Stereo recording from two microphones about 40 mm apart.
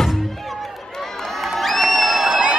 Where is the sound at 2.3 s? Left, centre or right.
Right.